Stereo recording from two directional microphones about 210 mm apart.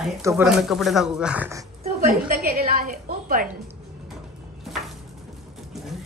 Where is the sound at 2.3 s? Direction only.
40° right (ahead or behind).